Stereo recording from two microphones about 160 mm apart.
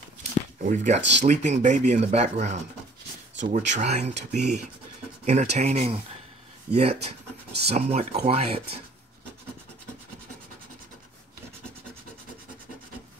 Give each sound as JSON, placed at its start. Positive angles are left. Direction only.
{"t": 0.7, "sound": "speech", "side_deg": -45}